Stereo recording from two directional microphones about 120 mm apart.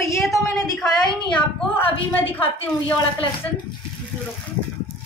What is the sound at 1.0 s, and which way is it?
Speech, 5° left (ahead or behind).